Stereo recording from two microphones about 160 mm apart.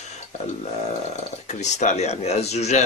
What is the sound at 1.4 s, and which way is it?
Speech, 45° left (ahead or behind).